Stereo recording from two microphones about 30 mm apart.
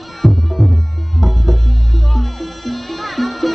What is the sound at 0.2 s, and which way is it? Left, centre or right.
Music, centre.